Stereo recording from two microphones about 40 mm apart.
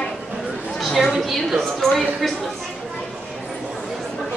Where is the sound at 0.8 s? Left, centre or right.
Centre.